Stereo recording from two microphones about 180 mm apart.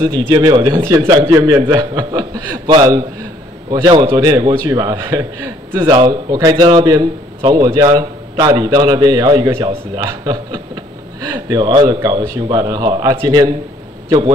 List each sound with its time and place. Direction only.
0.3 s a man's voice: 25° right (ahead or behind)